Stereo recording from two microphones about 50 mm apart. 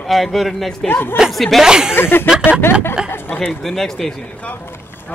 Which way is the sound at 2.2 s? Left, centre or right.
Centre.